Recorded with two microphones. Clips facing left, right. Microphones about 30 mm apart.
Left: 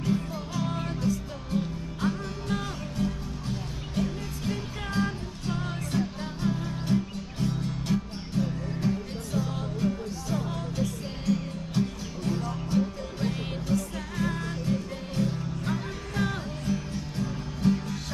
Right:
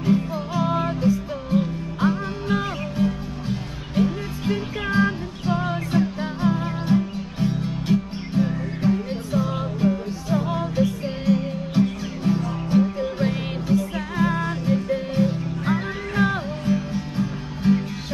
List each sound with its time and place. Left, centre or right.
0.0 s music: right